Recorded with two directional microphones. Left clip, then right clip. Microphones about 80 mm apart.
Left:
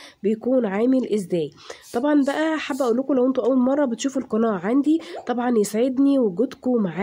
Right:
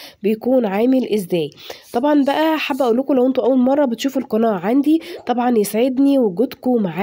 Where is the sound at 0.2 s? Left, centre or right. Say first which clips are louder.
Right 4 dB; right.